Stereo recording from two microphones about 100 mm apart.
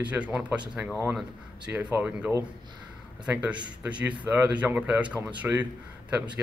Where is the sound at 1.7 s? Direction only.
15° right (ahead or behind).